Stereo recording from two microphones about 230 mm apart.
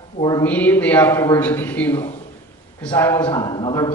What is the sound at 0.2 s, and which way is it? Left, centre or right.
A man's voice, centre.